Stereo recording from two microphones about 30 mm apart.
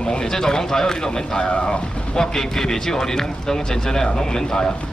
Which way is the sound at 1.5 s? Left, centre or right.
Left.